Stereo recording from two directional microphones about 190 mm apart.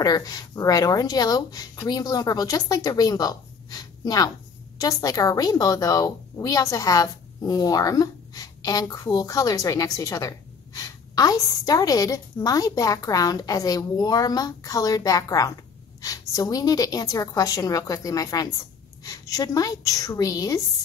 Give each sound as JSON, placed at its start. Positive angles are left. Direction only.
{"t": 0.0, "sound": "a woman's voice", "side_deg": 20}